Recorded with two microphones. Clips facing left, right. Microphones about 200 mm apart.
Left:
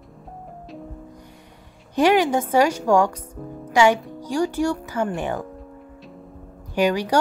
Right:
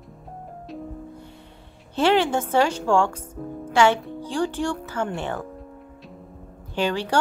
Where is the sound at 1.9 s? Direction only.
10° left (ahead or behind).